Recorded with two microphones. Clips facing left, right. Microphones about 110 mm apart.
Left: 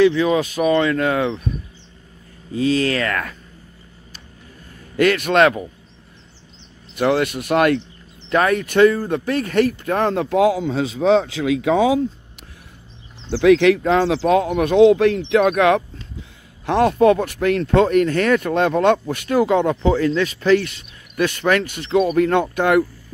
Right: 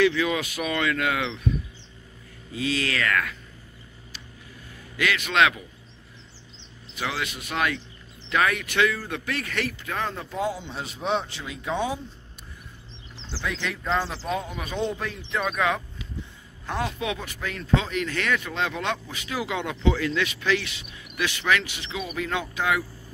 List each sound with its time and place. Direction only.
0.0 s speech: 30° left (ahead or behind)
2.5 s speech: 35° left (ahead or behind)
4.9 s speech: 45° left (ahead or behind)
7.0 s speech: 50° left (ahead or behind)
8.3 s speech: 40° left (ahead or behind); by 12.4 s 90° left
13.3 s a man's voice: 80° left
17.0 s speech: 55° left (ahead or behind)